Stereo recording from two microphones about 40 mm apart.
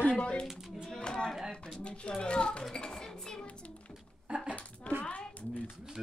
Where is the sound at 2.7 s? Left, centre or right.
Centre.